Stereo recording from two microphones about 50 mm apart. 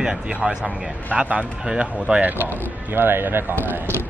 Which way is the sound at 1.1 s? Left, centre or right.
Right.